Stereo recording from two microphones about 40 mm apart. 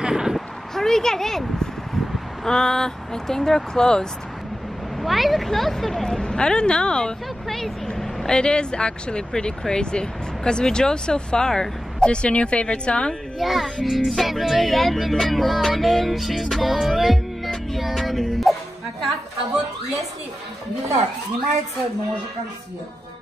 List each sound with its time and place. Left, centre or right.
0.1 s a sound: centre
0.7 s speech: centre
5.0 s music: centre
6.0 s speech: centre
7.4 s music: centre
8.0 s a sound: centre
8.4 s speech: left
12.1 s speech: left
13.4 s music: centre